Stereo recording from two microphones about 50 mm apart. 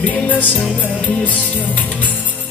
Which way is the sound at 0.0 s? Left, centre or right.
Left.